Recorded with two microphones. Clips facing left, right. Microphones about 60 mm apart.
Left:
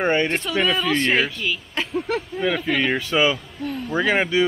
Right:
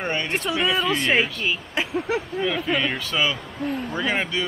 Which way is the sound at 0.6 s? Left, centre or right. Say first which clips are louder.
Left 3 dB; centre.